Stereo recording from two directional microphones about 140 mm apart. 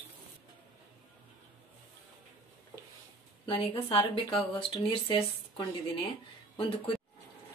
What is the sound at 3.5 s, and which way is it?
Speech, 40° left (ahead or behind).